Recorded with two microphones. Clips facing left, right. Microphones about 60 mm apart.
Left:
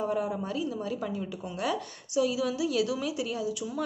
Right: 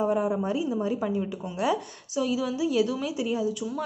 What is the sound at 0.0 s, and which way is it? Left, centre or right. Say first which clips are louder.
A woman's voice: right 5 dB; centre.